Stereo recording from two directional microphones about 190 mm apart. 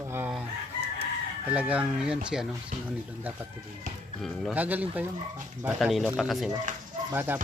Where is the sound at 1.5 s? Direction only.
5° right (ahead or behind).